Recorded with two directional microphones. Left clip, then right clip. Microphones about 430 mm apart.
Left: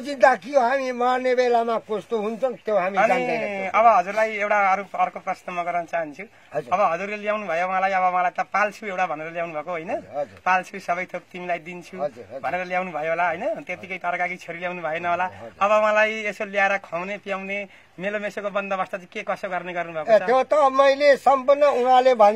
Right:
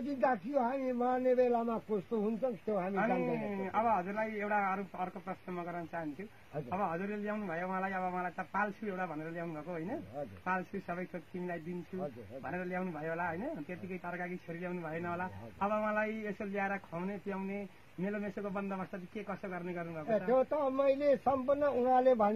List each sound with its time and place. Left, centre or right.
0.2 s a man's voice: centre